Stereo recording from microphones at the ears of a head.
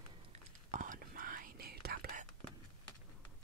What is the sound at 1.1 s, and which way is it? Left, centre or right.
Whispering, right.